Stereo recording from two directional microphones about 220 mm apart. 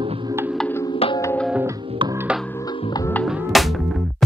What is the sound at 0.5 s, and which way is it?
Music, 5° left (ahead or behind).